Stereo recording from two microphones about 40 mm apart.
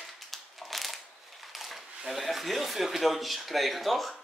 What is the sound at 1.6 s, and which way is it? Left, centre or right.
Speech, centre.